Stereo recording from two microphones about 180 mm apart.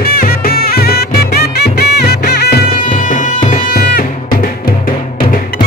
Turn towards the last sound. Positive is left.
turn(degrees=55)  # may be behind; listen again after turning